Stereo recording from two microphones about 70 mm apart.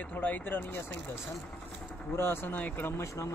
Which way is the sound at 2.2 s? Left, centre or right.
Left.